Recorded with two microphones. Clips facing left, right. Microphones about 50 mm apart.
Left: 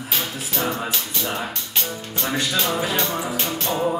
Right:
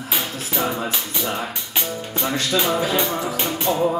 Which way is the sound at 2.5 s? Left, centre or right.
Centre.